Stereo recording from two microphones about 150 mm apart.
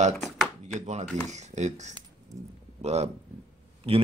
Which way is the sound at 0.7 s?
50° right (ahead or behind).